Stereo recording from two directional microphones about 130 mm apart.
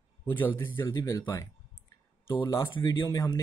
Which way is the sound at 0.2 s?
15° left (ahead or behind).